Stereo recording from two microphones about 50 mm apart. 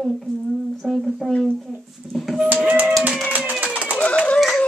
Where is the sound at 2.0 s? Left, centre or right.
Centre.